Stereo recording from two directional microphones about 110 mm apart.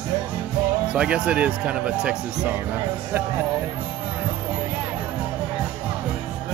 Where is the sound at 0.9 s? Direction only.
10° right (ahead or behind).